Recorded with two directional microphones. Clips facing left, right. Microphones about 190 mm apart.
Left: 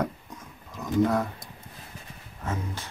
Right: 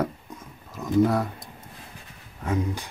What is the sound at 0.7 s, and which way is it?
Speech, 10° right (ahead or behind).